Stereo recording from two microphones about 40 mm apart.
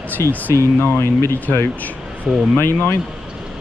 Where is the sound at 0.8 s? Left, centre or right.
Left.